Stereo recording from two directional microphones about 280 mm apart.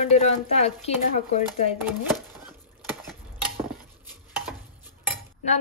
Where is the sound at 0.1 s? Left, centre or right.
Left.